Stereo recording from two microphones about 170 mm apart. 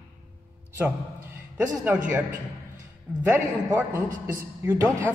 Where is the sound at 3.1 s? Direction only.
10° right (ahead or behind).